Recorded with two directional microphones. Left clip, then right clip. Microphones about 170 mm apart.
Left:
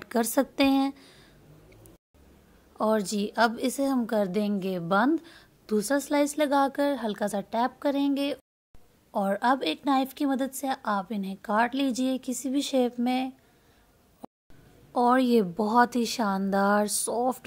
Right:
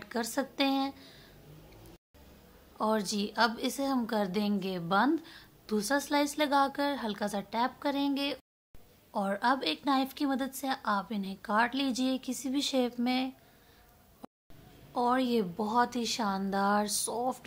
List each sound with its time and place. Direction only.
0.0 s a woman's voice: 45° left (ahead or behind)
2.8 s a woman's voice: 35° left (ahead or behind)
14.2 s a sound: centre (ahead or behind)
15.0 s a woman's voice: 40° left (ahead or behind)